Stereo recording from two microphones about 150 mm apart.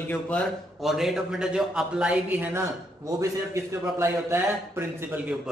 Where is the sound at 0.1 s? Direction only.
10° left (ahead or behind); by 2.6 s 10° right (ahead or behind).